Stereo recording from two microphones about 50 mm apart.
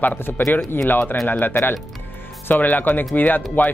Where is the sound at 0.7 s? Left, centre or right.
Left.